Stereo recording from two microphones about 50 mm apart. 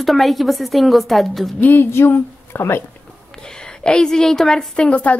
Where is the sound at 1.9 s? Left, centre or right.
Left.